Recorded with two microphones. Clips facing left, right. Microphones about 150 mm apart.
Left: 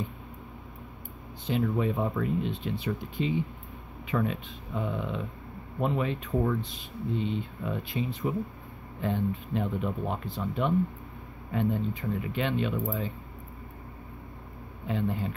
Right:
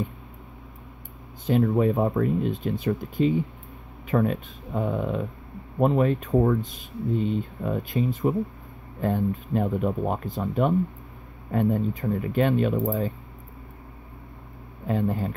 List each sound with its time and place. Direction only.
1.4 s speech: 45° right (ahead or behind)
14.9 s speech: 45° right (ahead or behind)